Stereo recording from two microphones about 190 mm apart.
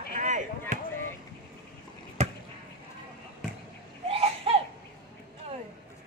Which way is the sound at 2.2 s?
35° right (ahead or behind).